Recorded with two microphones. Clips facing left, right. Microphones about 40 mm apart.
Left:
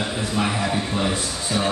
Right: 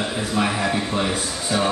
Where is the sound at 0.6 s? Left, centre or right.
Centre.